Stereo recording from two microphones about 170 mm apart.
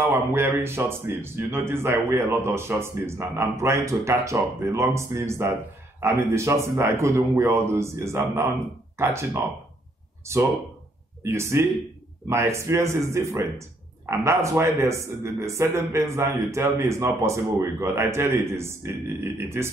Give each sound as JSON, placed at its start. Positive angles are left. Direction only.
{"t": 0.0, "sound": "speech", "side_deg": -15}
{"t": 11.2, "sound": "speech", "side_deg": -15}